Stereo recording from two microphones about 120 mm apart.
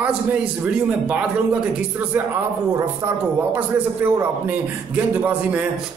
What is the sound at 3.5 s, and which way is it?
A man's voice, 15° right (ahead or behind).